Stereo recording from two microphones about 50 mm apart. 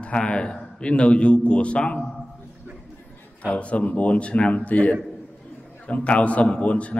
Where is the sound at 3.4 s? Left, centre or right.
Left.